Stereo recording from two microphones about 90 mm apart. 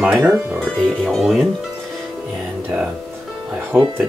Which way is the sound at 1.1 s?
Centre (ahead or behind).